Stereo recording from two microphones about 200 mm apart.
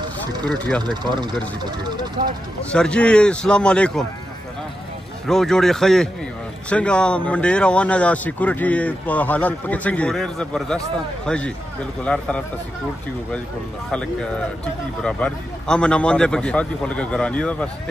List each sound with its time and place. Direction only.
0.5 s speech: 5° left (ahead or behind)
0.8 s speech: 20° right (ahead or behind)
2.7 s speech: 5° left (ahead or behind)
5.2 s speech: centre (ahead or behind)
15.0 s speech: 5° left (ahead or behind)